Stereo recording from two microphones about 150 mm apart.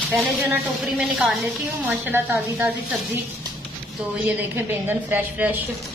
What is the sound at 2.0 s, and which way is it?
Speech, 15° right (ahead or behind).